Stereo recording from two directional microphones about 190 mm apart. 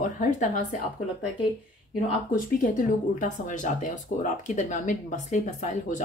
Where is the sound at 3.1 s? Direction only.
40° left (ahead or behind).